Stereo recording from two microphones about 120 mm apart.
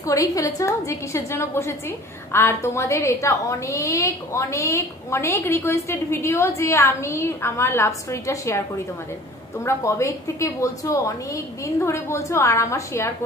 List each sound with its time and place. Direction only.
0.0 s a woman's voice: 30° left (ahead or behind)